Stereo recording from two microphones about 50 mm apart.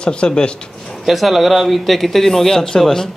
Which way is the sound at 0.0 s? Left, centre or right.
Centre.